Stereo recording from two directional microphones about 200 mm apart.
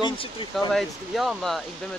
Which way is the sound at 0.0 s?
25° left (ahead or behind).